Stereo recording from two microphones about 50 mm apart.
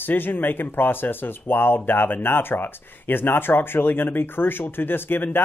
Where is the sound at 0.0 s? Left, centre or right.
Left.